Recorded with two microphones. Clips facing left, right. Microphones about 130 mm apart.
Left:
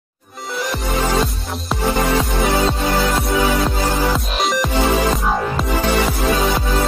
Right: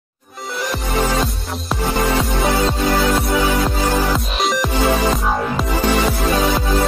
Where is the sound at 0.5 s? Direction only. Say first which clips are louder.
Left 1 dB; centre (ahead or behind).